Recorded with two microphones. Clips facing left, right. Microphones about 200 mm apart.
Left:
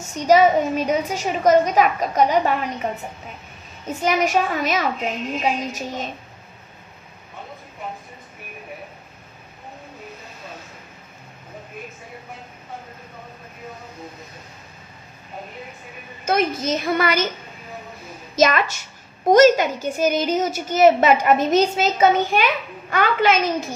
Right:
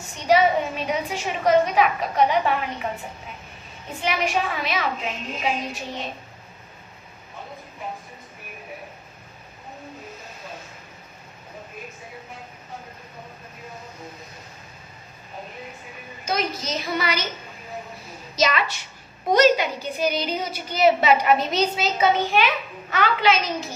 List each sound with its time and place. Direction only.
0.0 s a woman's voice: 40° left (ahead or behind)
3.8 s a woman's voice: 45° left (ahead or behind)
16.3 s a woman's voice: 50° left (ahead or behind)
18.3 s a woman's voice: 50° left (ahead or behind)